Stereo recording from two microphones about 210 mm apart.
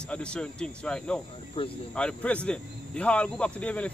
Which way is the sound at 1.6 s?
25° left (ahead or behind).